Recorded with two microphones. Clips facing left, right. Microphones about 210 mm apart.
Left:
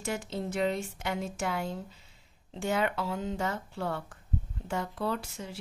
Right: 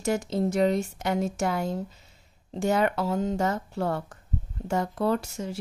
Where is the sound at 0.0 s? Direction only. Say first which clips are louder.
Right 8 dB; 40° right (ahead or behind).